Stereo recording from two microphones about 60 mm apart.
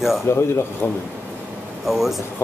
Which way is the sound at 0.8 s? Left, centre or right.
Left.